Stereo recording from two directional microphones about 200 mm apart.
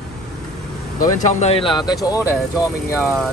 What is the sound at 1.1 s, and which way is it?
Speech, 30° left (ahead or behind).